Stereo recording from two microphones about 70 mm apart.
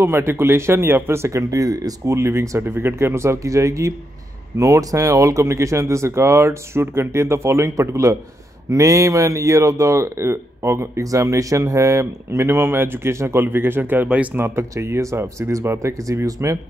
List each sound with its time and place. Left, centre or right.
0.0 s speech: right
2.1 s speech: right
2.6 s speech: right
14.0 s speech: centre
14.3 s speech: right